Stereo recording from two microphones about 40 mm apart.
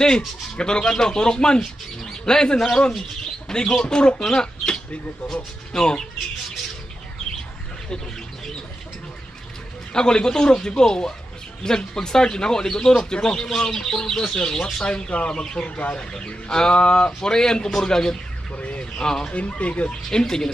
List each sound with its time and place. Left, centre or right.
0.6 s speech: left
9.9 s speech: centre
18.6 s speech: left
18.9 s speech: centre
19.3 s speech: left
19.9 s speech: centre